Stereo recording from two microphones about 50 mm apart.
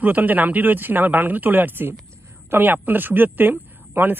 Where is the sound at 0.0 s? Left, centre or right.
Right.